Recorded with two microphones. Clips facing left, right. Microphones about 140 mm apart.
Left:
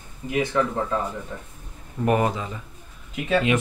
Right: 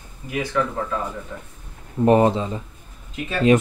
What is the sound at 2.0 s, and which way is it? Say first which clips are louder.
Speech: right 6 dB; 30° right (ahead or behind).